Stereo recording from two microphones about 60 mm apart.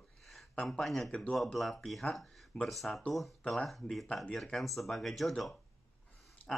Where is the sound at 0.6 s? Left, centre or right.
Centre.